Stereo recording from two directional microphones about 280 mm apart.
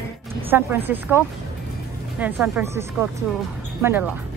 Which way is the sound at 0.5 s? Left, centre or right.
Centre.